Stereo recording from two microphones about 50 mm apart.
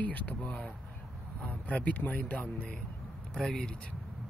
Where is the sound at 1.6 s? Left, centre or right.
Left.